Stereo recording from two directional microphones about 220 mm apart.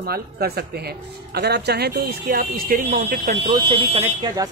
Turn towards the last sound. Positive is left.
turn(degrees=-20)  # may be behind; listen again after turning